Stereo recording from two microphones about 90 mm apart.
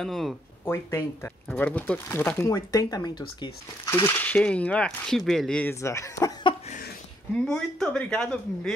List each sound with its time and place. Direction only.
0.0 s speech: centre (ahead or behind)
0.7 s speech: 30° left (ahead or behind)
1.5 s speech: 15° left (ahead or behind)
2.5 s speech: 40° left (ahead or behind)
3.0 s speech: 55° left (ahead or behind)
3.8 s speech: 30° left (ahead or behind)
4.4 s speech: 15° left (ahead or behind)
5.7 s speech: 35° left (ahead or behind)
7.4 s speech: 10° left (ahead or behind)